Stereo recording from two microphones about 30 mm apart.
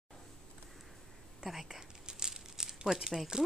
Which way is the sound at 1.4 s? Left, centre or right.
Centre.